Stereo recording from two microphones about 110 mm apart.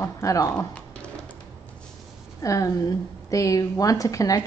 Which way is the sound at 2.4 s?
30° left (ahead or behind).